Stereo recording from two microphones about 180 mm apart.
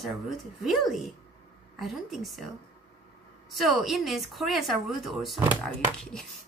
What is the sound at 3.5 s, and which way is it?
Speech, centre (ahead or behind).